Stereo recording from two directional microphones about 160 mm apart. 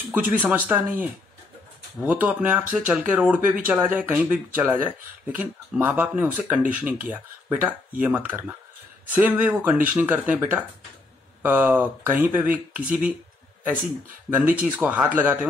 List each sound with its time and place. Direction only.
0.1 s speech: 10° right (ahead or behind)
14.3 s speech: 10° right (ahead or behind)